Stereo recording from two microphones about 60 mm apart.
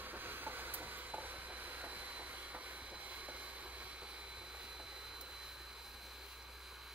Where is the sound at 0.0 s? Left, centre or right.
Right.